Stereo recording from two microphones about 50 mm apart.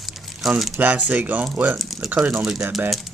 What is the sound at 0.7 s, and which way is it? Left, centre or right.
Speech, right.